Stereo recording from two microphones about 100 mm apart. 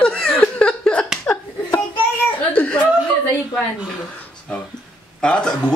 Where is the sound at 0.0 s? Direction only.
5° left (ahead or behind).